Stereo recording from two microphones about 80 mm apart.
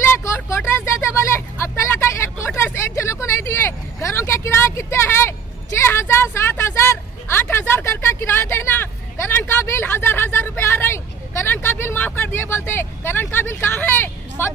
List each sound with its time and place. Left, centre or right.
0.1 s vehicle: left
14.4 s a woman's voice: left